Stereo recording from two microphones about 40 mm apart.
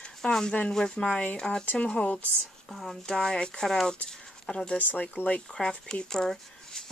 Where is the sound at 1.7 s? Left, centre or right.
Left.